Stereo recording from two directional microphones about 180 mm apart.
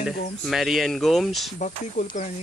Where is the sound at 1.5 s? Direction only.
45° left (ahead or behind).